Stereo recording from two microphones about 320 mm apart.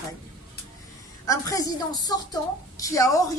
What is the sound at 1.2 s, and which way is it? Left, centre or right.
Speech, centre.